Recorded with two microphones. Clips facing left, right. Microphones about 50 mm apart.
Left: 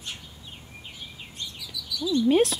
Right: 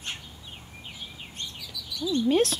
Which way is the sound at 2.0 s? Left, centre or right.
Right.